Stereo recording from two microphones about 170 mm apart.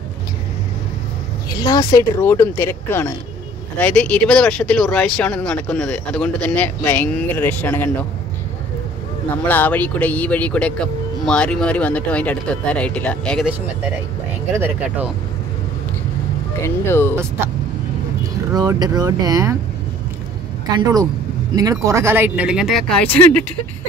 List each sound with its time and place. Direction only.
1.6 s speech: 25° left (ahead or behind)
9.3 s speech: 10° left (ahead or behind)
14.5 s speech: 10° right (ahead or behind)
16.6 s speech: 15° left (ahead or behind)
18.5 s speech: 20° right (ahead or behind)
20.7 s speech: 20° right (ahead or behind); by 23.4 s 10° left (ahead or behind)